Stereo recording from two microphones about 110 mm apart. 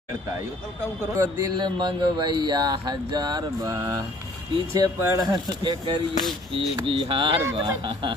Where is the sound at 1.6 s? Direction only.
40° right (ahead or behind).